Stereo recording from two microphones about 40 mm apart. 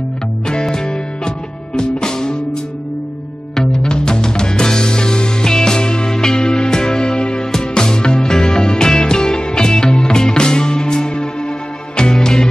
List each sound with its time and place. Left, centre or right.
0.5 s music: centre
3.5 s music: centre